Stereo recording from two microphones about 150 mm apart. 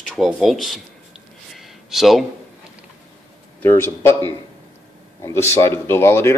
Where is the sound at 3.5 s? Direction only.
15° left (ahead or behind).